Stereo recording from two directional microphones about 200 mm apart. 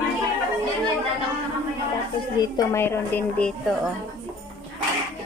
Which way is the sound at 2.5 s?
15° left (ahead or behind).